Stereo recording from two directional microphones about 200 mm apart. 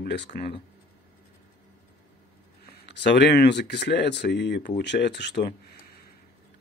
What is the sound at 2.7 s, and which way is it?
Speech, 55° left (ahead or behind).